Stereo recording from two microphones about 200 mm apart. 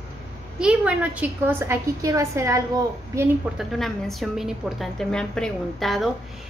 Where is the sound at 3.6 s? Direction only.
Centre (ahead or behind).